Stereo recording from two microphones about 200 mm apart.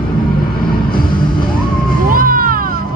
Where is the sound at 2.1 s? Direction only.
45° right (ahead or behind).